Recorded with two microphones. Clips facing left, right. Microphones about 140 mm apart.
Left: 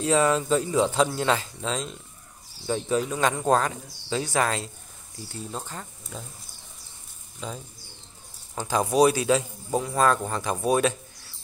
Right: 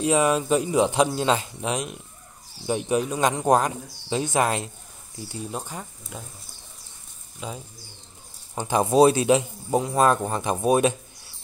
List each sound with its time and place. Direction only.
0.0 s a man's voice: 15° right (ahead or behind)
7.3 s speech: 10° right (ahead or behind)
8.5 s a man's voice: 20° right (ahead or behind)